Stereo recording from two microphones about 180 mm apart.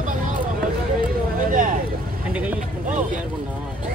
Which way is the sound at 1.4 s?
45° right (ahead or behind).